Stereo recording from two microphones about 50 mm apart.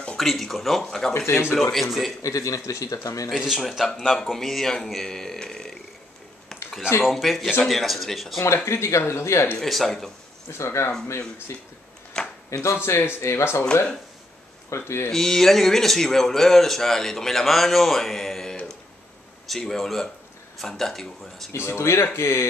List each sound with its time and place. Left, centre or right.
0.2 s speech: centre
2.2 s speech: left
3.3 s speech: centre
3.6 s speech: centre
7.1 s speech: centre
8.6 s speech: left
9.6 s speech: centre
10.6 s speech: left
12.2 s a sound: centre
12.7 s speech: left
14.7 s speech: left
15.0 s speech: centre
21.5 s speech: left